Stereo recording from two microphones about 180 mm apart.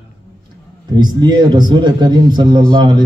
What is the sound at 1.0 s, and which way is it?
A man's voice, 25° right (ahead or behind).